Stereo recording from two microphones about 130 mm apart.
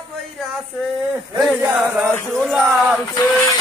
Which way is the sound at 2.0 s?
Centre (ahead or behind).